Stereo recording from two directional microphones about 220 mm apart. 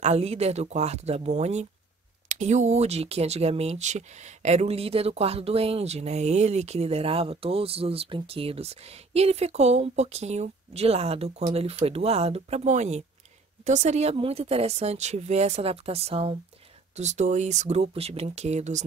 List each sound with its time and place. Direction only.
0.0 s speech: 30° right (ahead or behind)